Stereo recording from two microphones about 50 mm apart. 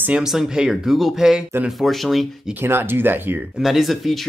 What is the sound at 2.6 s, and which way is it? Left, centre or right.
Speech, right.